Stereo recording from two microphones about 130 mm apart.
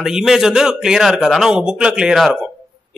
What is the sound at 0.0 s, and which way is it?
A man's voice, 5° right (ahead or behind).